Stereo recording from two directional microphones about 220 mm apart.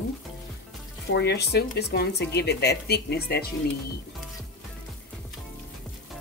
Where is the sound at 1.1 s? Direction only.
50° left (ahead or behind).